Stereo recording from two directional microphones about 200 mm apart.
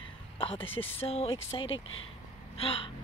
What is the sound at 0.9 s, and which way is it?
Speech, 30° left (ahead or behind).